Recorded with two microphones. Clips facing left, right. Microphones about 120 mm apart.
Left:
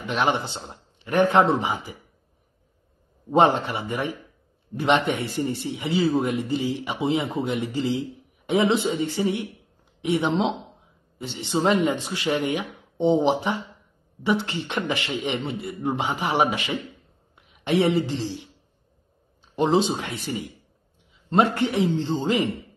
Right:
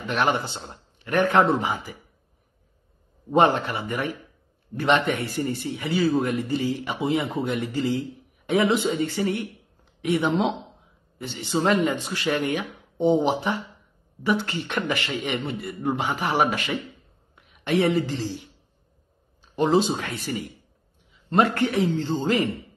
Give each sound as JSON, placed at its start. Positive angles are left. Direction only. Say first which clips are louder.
{"t": 0.0, "sound": "a man's voice", "louder": "even", "side_deg": 15}
{"t": 3.3, "sound": "a man's voice", "louder": "left 1 dB", "side_deg": 25}
{"t": 19.5, "sound": "a man's voice", "louder": "even", "side_deg": 20}